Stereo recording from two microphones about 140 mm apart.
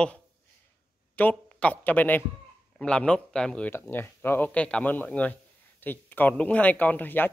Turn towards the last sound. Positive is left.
turn(degrees=15)  # may be behind; listen again after turning